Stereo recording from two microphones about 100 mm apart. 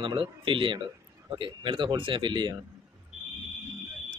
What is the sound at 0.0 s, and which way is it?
Speech, 55° right (ahead or behind).